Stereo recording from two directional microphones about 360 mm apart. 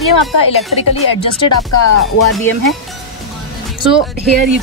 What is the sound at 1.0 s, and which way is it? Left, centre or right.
Speech, left.